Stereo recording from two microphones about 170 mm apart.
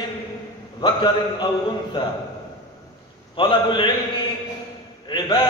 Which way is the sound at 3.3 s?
30° left (ahead or behind).